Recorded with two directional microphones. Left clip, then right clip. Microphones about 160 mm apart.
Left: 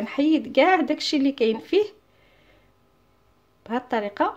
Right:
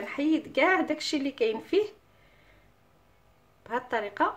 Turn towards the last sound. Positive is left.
turn(degrees=45)  # may be behind; listen again after turning